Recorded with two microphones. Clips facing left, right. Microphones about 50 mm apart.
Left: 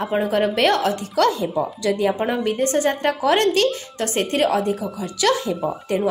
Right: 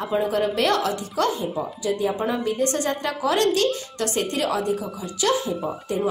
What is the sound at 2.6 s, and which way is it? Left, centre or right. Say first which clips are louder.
A woman's voice: left 4 dB; left.